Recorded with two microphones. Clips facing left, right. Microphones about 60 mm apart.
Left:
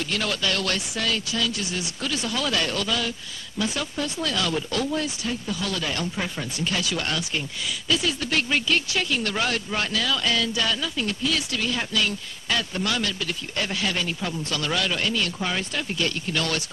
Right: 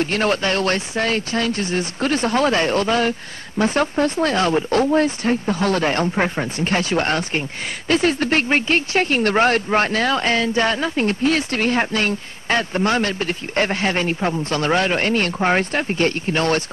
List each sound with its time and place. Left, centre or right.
0.0 s speech: right